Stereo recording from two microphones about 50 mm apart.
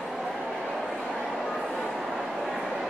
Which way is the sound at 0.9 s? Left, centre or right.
Centre.